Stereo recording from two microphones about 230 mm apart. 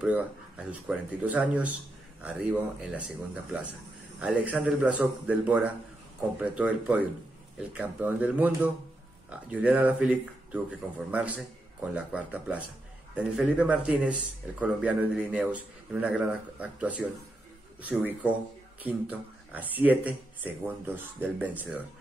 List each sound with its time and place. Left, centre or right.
0.0 s speech: centre
4.2 s speech: centre